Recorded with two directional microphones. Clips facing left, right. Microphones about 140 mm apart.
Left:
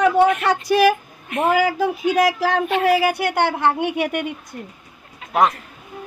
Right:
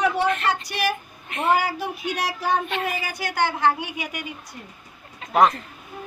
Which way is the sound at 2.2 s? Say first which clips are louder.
Left 6 dB; 90° left.